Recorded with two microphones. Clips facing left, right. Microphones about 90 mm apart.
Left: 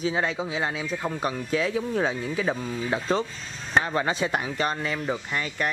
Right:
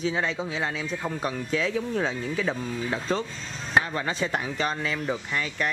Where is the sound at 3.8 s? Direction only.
35° left (ahead or behind).